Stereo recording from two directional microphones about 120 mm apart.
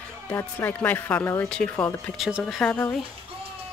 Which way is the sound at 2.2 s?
5° right (ahead or behind).